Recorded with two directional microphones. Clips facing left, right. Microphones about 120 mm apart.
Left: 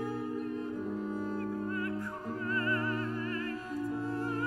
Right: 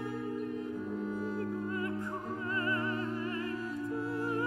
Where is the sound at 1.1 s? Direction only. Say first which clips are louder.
Even; 40° left (ahead or behind).